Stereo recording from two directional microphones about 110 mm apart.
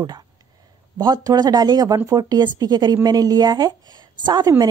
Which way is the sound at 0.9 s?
40° right (ahead or behind).